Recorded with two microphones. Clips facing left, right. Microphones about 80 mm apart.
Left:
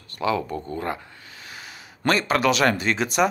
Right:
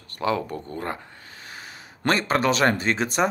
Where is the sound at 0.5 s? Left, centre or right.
Left.